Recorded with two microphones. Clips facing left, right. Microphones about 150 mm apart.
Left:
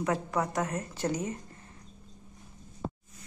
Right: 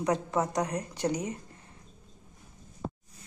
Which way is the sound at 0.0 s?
20° right (ahead or behind).